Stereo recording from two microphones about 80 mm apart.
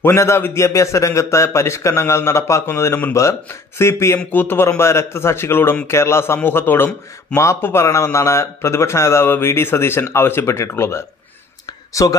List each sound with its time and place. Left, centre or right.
0.0 s a man's voice: left